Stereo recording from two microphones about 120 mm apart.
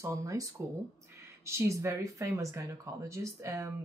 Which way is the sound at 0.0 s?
25° right (ahead or behind).